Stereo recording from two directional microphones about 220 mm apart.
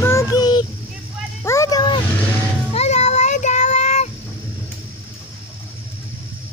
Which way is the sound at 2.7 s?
30° left (ahead or behind).